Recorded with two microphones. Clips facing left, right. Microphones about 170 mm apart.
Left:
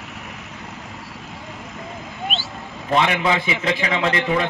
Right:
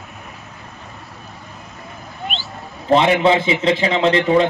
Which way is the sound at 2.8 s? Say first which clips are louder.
Right 6 dB; 30° right (ahead or behind).